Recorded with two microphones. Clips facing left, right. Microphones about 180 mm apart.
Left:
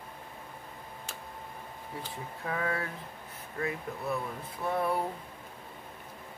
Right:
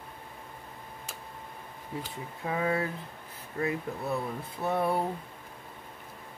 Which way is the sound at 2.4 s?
20° right (ahead or behind).